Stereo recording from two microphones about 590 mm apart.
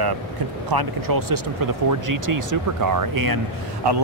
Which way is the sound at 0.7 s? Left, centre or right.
Right.